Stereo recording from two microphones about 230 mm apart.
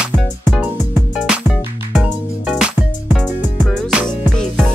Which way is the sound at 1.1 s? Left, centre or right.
Centre.